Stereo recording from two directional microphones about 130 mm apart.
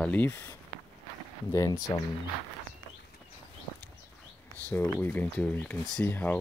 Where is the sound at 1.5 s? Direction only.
25° left (ahead or behind).